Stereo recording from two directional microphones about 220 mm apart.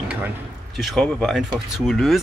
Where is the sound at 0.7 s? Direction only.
Centre (ahead or behind).